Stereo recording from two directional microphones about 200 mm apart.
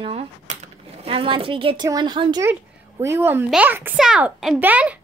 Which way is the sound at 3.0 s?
10° right (ahead or behind).